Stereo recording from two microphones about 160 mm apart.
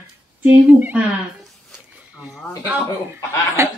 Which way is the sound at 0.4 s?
10° right (ahead or behind).